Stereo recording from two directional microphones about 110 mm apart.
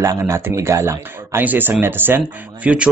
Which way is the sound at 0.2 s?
25° right (ahead or behind).